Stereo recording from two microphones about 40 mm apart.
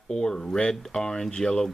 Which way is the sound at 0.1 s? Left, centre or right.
Centre.